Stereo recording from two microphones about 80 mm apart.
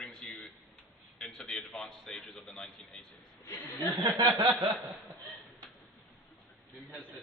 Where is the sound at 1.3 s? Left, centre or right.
Centre.